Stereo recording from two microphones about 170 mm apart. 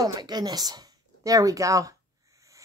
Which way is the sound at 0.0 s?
25° right (ahead or behind).